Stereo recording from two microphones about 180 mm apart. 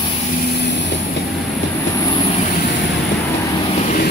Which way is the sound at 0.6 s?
65° left (ahead or behind).